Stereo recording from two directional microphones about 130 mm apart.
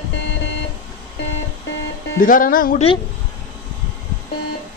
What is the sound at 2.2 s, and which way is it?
Music, 90° left.